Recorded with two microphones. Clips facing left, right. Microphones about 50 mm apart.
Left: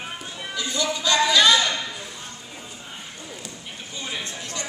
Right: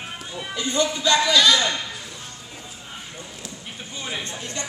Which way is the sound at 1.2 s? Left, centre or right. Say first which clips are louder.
Left 2 dB; centre.